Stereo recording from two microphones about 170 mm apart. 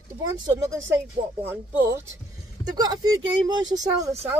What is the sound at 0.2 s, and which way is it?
Speech, 20° right (ahead or behind).